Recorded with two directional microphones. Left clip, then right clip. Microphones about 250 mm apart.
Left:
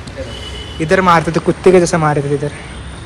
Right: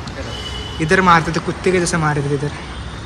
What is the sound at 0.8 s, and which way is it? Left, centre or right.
Speech, centre.